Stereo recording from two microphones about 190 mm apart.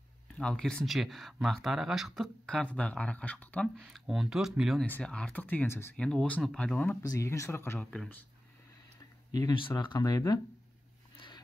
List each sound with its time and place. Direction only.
0.4 s speech: 5° left (ahead or behind)
7.8 s speech: 5° left (ahead or behind)
9.3 s speech: 20° left (ahead or behind)
11.1 s a sound: 25° left (ahead or behind)